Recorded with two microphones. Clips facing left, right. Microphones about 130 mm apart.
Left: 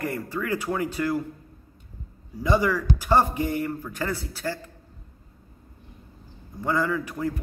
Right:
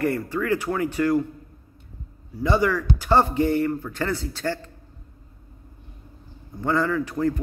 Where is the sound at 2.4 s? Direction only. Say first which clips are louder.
Right 1 dB; 15° left (ahead or behind).